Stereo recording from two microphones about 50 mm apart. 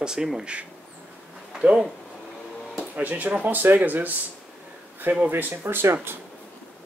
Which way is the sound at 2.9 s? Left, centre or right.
Right.